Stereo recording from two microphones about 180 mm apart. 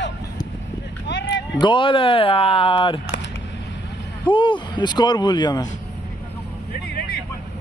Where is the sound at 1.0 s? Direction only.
75° left (ahead or behind).